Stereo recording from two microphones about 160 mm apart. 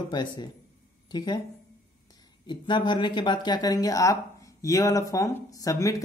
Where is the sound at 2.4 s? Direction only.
30° left (ahead or behind).